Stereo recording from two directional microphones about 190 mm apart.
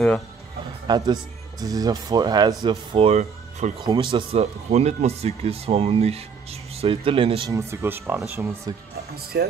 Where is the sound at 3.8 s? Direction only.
25° right (ahead or behind).